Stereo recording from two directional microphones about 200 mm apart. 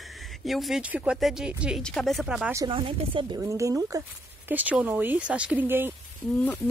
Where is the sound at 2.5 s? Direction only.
25° right (ahead or behind); by 5.9 s 10° right (ahead or behind).